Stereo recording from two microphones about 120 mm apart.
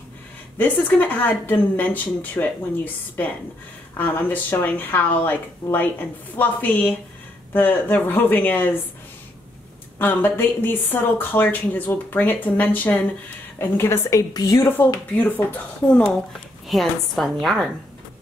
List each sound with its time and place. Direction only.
0.6 s a woman's voice: 15° left (ahead or behind)
9.9 s a woman's voice: 15° left (ahead or behind)
15.1 s a woman's voice: 15° left (ahead or behind)
16.6 s a woman's voice: centre (ahead or behind)